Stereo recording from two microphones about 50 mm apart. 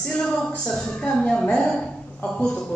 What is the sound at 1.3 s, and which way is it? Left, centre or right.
Speech, centre.